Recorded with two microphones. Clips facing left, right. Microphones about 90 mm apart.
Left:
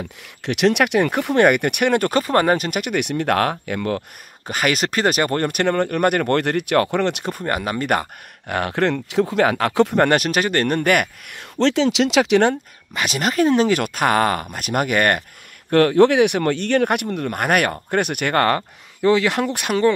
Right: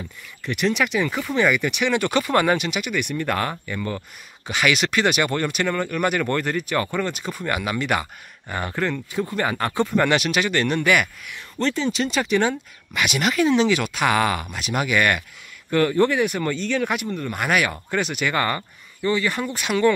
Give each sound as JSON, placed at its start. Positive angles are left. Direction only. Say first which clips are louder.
{"t": 0.0, "sound": "speech", "louder": "left 5 dB", "side_deg": 70}
{"t": 4.5, "sound": "speech", "louder": "left 1 dB", "side_deg": 45}
{"t": 6.3, "sound": "speech", "louder": "left 5 dB", "side_deg": 65}
{"t": 7.4, "sound": "speech", "louder": "left 2 dB", "side_deg": 40}
{"t": 8.5, "sound": "speech", "louder": "left 5 dB", "side_deg": 70}
{"t": 9.3, "sound": "speech", "louder": "left 4 dB", "side_deg": 85}
{"t": 10.0, "sound": "speech", "louder": "left 3 dB", "side_deg": 45}
{"t": 11.6, "sound": "speech", "louder": "left 6 dB", "side_deg": 90}
{"t": 12.9, "sound": "speech", "louder": "left 1 dB", "side_deg": 35}
{"t": 15.7, "sound": "speech", "louder": "left 5 dB", "side_deg": 70}
{"t": 19.0, "sound": "speech", "louder": "left 6 dB", "side_deg": 85}